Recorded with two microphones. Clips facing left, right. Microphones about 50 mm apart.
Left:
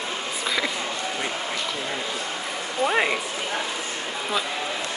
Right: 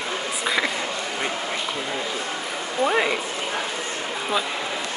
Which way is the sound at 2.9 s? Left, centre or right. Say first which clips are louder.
Even; centre.